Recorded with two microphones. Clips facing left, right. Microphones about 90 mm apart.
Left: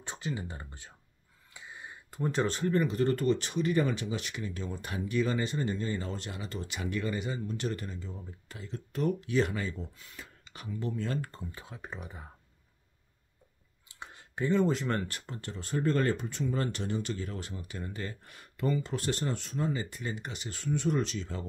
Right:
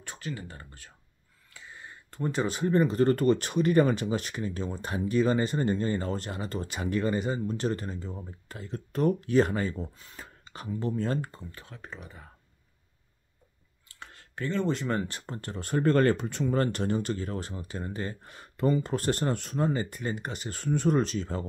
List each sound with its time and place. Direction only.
0.0 s speech: 20° left (ahead or behind)
1.5 s a sound: 15° left (ahead or behind)
2.6 s speech: 30° right (ahead or behind)
11.5 s speech: 15° left (ahead or behind)
13.8 s clicking: 15° left (ahead or behind)
14.7 s speech: centre (ahead or behind)
15.2 s speech: 45° right (ahead or behind)